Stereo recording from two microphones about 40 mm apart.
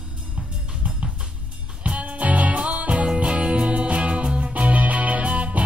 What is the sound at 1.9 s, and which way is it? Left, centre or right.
Music, right.